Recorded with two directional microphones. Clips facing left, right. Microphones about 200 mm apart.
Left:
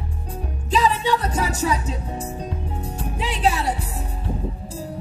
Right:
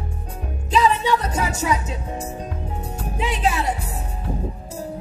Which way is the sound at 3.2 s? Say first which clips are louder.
Even; 35° left (ahead or behind).